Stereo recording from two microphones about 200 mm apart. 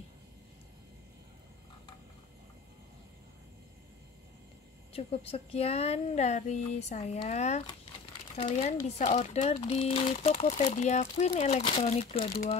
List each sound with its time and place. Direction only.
4.9 s speech: 30° left (ahead or behind)